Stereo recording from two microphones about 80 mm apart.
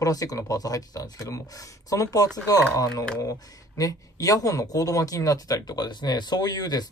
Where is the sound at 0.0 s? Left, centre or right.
Left.